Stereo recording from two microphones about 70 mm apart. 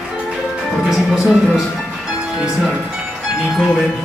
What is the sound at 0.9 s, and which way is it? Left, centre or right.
Music, centre.